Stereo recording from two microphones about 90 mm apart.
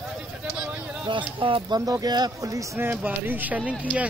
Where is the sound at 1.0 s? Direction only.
70° right (ahead or behind).